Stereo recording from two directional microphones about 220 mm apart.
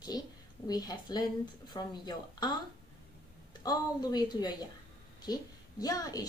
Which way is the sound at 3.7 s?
20° left (ahead or behind).